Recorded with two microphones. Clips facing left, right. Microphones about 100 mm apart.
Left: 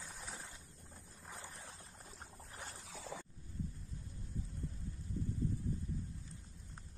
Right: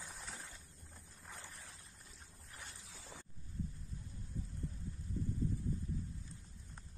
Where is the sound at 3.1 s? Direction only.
90° left.